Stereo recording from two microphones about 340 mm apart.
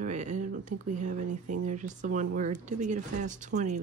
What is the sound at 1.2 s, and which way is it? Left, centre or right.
Speech, right.